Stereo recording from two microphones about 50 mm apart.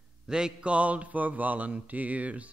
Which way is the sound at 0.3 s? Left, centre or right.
Centre.